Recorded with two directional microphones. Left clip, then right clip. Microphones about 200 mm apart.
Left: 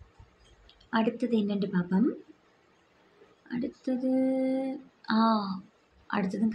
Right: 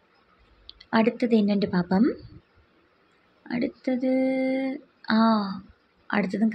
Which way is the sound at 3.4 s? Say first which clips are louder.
Right 6 dB; 15° right (ahead or behind).